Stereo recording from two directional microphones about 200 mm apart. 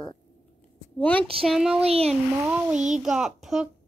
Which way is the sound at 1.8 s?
30° right (ahead or behind).